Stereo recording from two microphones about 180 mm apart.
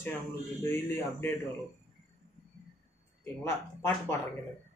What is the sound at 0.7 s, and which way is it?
Speech, 15° left (ahead or behind).